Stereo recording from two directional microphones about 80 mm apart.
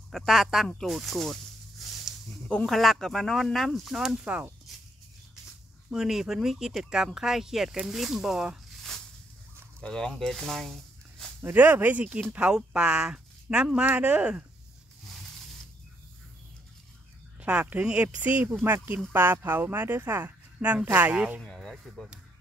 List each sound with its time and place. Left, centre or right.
0.1 s snake: centre
2.5 s speech: centre
5.9 s speech: centre
11.4 s speech: right
17.4 s speech: centre